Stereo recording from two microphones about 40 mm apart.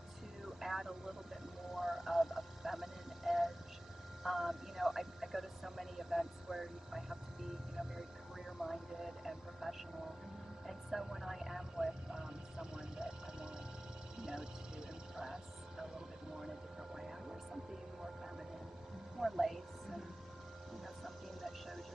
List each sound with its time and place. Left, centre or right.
0.6 s vehicle: centre
8.5 s vehicle: centre
11.7 s a sound: centre
14.2 s music: centre
16.3 s a sound: centre
19.1 s music: centre